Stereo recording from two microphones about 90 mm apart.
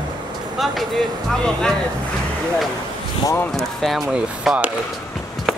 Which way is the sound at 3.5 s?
5° left (ahead or behind).